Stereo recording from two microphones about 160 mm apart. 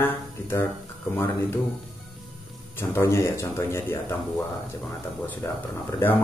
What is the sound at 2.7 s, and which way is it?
Speech, 15° left (ahead or behind).